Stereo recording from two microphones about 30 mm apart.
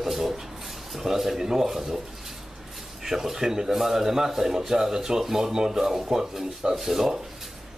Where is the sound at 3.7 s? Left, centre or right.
Centre; by 6.8 s right.